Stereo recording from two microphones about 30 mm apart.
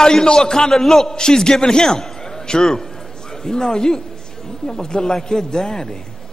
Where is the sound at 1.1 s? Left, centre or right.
Left.